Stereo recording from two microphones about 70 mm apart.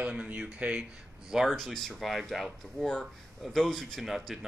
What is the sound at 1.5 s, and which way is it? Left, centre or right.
Speech, centre.